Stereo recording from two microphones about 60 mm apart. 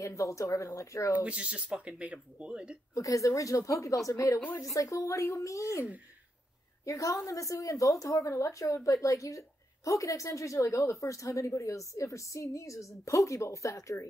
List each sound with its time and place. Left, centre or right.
0.0 s a woman's voice: left
1.1 s speech: centre
2.9 s a woman's voice: left
6.9 s a woman's voice: left